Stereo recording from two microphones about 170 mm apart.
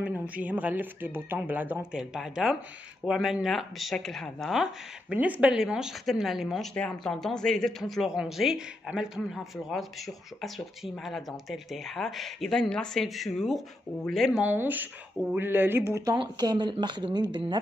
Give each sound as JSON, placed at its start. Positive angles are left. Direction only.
{"t": 0.0, "sound": "speech", "side_deg": -10}
{"t": 14.4, "sound": "speech", "side_deg": -10}